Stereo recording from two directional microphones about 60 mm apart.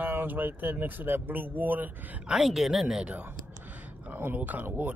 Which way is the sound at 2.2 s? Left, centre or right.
Centre.